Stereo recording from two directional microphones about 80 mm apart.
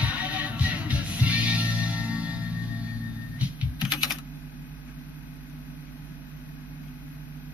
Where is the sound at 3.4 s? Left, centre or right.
Centre.